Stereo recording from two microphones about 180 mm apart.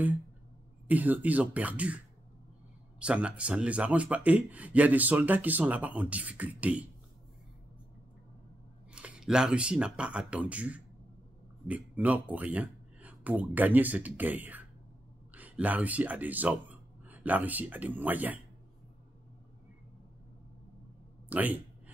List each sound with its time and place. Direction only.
0.8 s speech: 10° right (ahead or behind)
8.9 s speech: 5° right (ahead or behind)
21.3 s a sound: 10° right (ahead or behind)